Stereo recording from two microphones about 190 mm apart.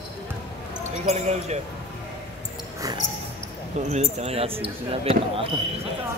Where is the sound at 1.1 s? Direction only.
35° right (ahead or behind).